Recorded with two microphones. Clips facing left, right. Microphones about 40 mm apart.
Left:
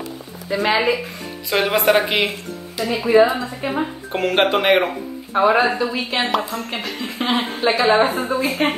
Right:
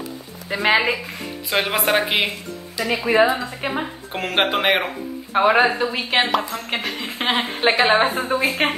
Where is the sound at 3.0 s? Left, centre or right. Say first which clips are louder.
Left 3 dB; right.